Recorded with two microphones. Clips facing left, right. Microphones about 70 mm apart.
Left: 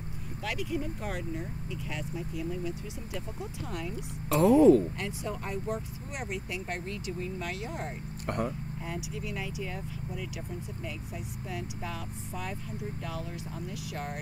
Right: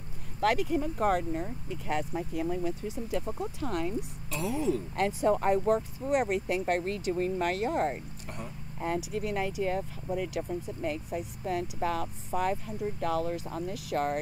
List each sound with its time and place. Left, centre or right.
0.4 s speech: right
4.3 s a woman's voice: left
4.9 s speech: right
8.3 s a woman's voice: left
8.8 s speech: right